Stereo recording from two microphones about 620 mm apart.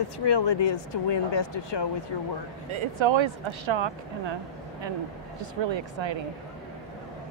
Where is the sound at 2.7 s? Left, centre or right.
Right.